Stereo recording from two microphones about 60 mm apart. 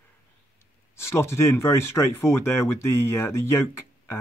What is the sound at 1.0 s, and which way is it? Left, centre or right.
Speech, left.